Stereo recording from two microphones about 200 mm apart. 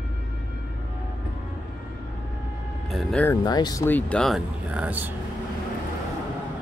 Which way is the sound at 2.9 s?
Centre (ahead or behind).